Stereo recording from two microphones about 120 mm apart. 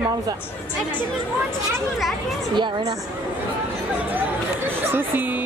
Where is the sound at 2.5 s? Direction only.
40° right (ahead or behind).